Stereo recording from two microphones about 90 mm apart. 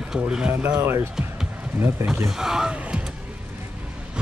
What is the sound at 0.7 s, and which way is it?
Speech, 25° right (ahead or behind).